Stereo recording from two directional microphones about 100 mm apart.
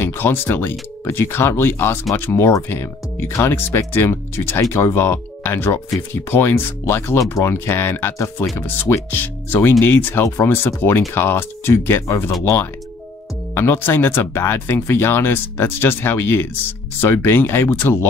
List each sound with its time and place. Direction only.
0.0 s speech: 25° left (ahead or behind)
13.6 s speech: 25° left (ahead or behind)